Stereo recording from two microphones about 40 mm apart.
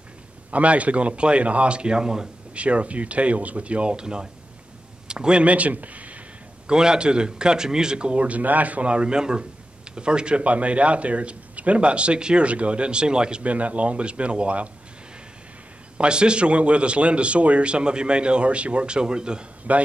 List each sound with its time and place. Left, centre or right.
0.5 s speech: right; by 2.2 s centre
2.5 s a man's voice: right
5.4 s speech: right
6.7 s a man's voice: centre
13.4 s speech: right
16.0 s a man's voice: right
19.7 s speech: right